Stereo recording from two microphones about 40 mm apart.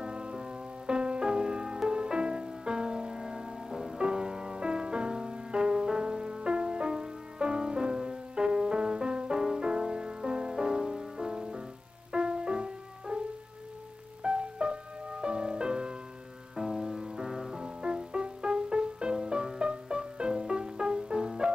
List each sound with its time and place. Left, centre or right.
0.0 s music: right
14.2 s music: right